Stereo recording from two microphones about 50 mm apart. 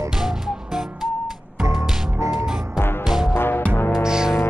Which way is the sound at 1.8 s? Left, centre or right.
Right.